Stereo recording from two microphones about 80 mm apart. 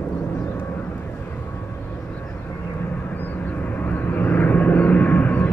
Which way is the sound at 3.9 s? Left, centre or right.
Left.